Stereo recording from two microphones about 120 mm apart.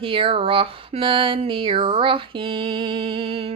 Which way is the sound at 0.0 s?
45° right (ahead or behind).